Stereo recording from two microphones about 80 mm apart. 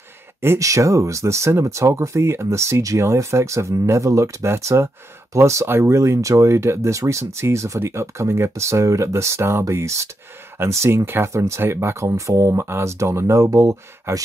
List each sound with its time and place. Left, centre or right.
0.6 s speech: right